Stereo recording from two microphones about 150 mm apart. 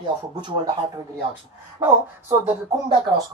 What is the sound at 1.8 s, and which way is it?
Speech, 15° right (ahead or behind).